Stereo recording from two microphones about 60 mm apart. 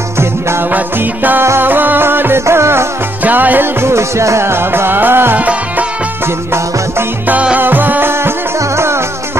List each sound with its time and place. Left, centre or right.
0.2 s music: right
0.7 s music: right
3.3 s music: right
3.8 s music: right
5.4 s music: right
7.5 s music: right